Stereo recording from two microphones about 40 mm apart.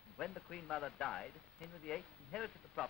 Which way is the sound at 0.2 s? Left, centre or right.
Centre.